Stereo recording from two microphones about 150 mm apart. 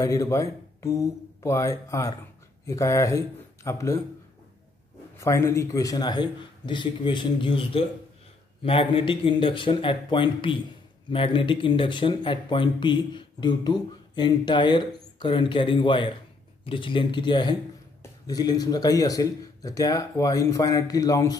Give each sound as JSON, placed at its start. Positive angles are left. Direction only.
{"t": 0.0, "sound": "speech", "side_deg": 20}
{"t": 5.2, "sound": "speech", "side_deg": 20}